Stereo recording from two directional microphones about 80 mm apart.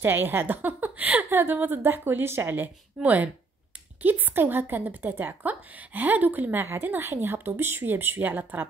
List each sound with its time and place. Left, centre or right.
0.0 s a woman's voice: right